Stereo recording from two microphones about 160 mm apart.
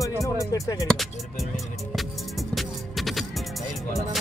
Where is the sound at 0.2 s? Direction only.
25° left (ahead or behind).